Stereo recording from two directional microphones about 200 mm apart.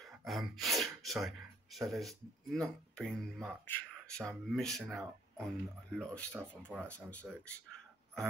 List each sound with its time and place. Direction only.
0.0 s speech: centre (ahead or behind)